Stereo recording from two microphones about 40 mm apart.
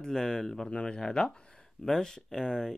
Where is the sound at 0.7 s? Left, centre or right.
Left.